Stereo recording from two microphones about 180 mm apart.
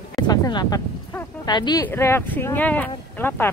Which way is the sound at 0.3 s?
20° left (ahead or behind).